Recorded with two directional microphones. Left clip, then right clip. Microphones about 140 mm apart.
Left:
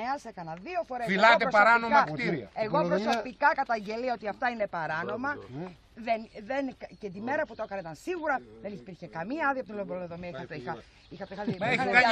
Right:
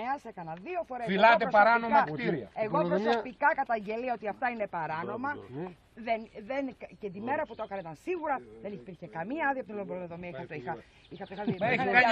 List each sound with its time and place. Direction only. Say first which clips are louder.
0.0 s speech: left 1 dB; 5° right (ahead or behind)
1.1 s a man's voice: left 1 dB; 10° left (ahead or behind)
2.5 s speech: left 2 dB; centre (ahead or behind)
11.6 s speech: left 1 dB; 5° left (ahead or behind)